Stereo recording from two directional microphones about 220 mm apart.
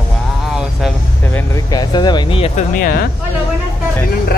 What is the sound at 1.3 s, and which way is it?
Speech, 15° left (ahead or behind).